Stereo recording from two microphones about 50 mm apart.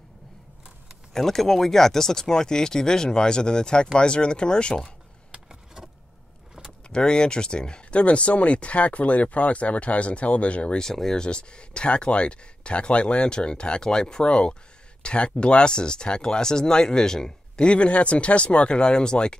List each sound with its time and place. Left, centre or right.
1.1 s speech: centre
5.3 s vehicle: centre
6.9 s speech: centre
10.8 s speech: centre